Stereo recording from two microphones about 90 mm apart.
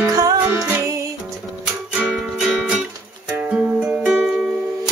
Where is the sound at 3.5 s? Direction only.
10° right (ahead or behind).